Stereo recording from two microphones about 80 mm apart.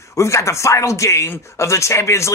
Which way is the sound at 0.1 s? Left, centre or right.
Left.